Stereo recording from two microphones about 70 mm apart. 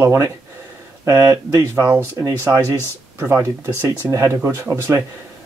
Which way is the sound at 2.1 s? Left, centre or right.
Right.